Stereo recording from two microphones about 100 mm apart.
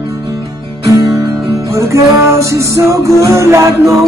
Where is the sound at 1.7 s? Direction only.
30° right (ahead or behind).